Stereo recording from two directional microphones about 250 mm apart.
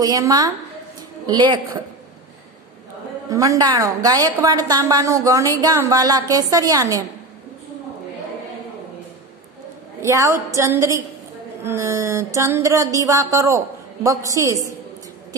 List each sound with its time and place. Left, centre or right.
0.0 s a man's voice: centre
3.3 s a man's voice: centre
10.0 s a man's voice: centre